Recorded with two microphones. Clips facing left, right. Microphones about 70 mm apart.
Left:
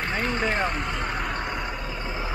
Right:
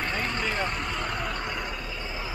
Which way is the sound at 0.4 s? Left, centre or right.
Left.